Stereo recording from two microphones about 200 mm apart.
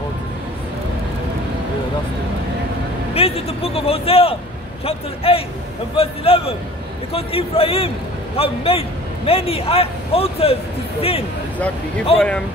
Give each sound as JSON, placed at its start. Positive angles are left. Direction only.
{"t": 3.2, "sound": "a man's voice", "side_deg": 30}
{"t": 12.2, "sound": "speech", "side_deg": 5}